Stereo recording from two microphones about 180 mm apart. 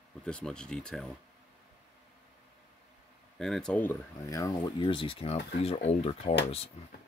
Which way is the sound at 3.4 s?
5° left (ahead or behind).